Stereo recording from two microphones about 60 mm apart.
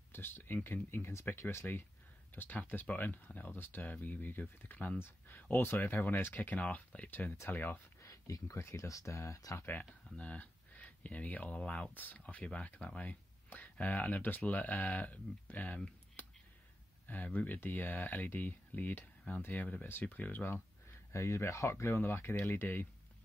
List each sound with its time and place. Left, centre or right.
0.1 s speech: left
4.9 s speech: left
8.0 s a sound: left
8.6 s speech: left
10.0 s speech: left
17.1 s speech: left
21.1 s speech: left